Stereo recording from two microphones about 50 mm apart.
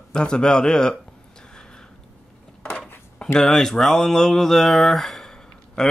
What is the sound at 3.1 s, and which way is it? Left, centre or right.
Speech, centre.